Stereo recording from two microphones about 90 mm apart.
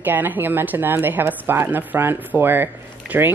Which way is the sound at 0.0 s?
20° right (ahead or behind).